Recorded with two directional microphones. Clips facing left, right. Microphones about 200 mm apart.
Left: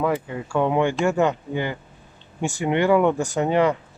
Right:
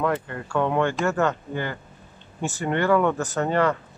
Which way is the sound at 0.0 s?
5° left (ahead or behind).